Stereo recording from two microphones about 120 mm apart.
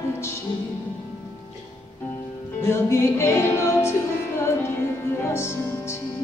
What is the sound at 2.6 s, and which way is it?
Music, 20° left (ahead or behind).